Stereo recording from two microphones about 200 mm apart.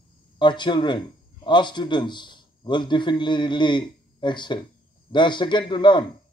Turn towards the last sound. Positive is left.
turn(degrees=25)  # may be behind; listen again after turning